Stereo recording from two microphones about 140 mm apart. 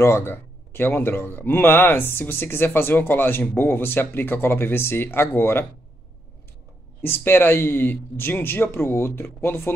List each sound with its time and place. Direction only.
0.0 s a man's voice: 15° left (ahead or behind)
7.0 s a man's voice: 15° left (ahead or behind)